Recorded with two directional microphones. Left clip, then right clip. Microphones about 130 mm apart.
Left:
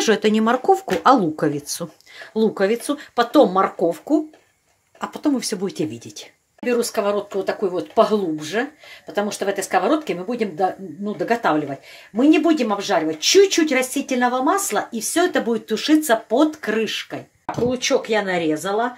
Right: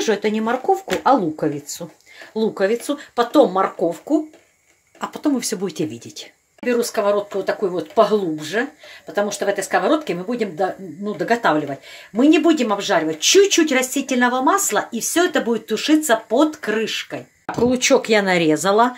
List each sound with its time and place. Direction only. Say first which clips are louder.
0.0 s speech: left 2 dB; 35° left (ahead or behind)
5.0 s speech: right 1 dB; 5° left (ahead or behind)
17.6 s speech: right 4 dB; 45° right (ahead or behind); by 18.9 s 60° right (ahead or behind)